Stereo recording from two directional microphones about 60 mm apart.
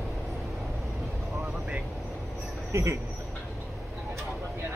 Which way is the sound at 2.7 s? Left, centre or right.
Right.